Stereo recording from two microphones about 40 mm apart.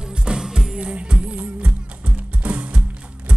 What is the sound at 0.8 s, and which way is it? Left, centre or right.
Music, right.